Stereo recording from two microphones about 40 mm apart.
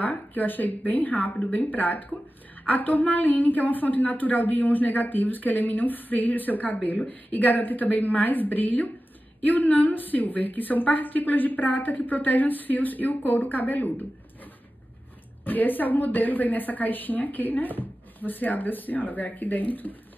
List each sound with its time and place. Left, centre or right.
0.0 s a woman's voice: left